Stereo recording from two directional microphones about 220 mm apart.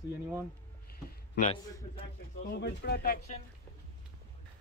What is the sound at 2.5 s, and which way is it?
Speech, 50° left (ahead or behind).